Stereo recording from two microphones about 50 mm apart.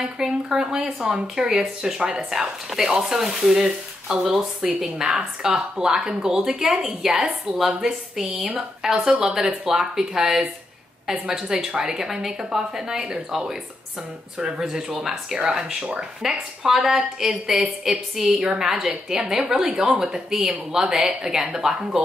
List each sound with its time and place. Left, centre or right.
0.0 s speech: centre
14.4 s speech: centre